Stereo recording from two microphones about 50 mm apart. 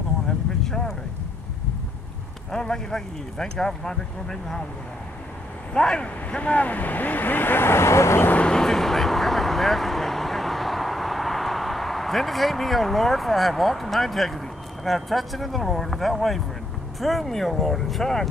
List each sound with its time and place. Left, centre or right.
0.7 s vehicle: centre
2.5 s speech: centre
5.7 s speech: centre
6.4 s speech: left
8.4 s vehicle: centre
14.9 s speech: centre